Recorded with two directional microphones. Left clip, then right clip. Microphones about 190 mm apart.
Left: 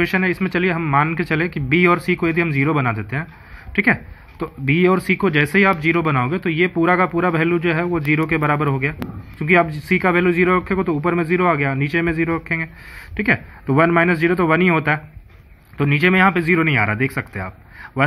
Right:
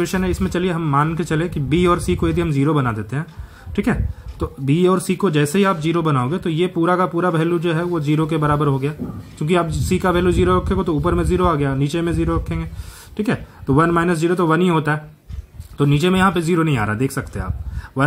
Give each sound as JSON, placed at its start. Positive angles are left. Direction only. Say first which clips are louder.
{"t": 0.2, "sound": "speech", "louder": "left 2 dB", "side_deg": 0}
{"t": 10.4, "sound": "speech", "louder": "left 1 dB", "side_deg": 30}
{"t": 10.8, "sound": "speech", "louder": "even", "side_deg": 0}
{"t": 15.8, "sound": "speech", "louder": "left 2 dB", "side_deg": 0}